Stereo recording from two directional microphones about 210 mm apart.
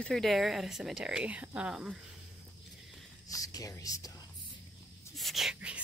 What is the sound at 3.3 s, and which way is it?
Speech, 15° left (ahead or behind).